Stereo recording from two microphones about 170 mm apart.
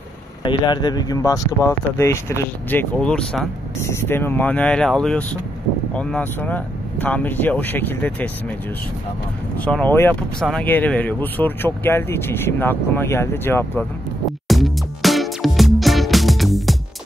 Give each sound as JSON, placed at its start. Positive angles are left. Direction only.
{"t": 0.4, "sound": "speech", "side_deg": 25}
{"t": 9.7, "sound": "speech", "side_deg": 10}
{"t": 14.5, "sound": "music", "side_deg": 0}